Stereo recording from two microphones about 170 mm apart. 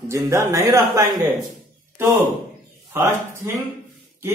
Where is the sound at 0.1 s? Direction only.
15° right (ahead or behind).